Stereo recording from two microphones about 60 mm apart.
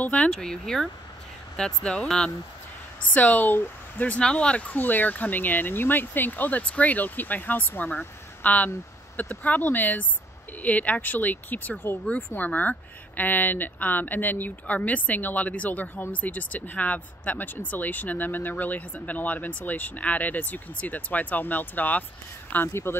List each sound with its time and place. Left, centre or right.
0.0 s speech: left
3.1 s speech: left
4.2 s speech: centre
22.7 s speech: left